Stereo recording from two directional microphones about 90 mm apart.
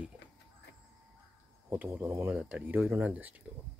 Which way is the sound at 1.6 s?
25° right (ahead or behind).